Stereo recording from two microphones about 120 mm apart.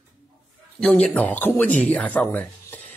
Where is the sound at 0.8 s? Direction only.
5° left (ahead or behind).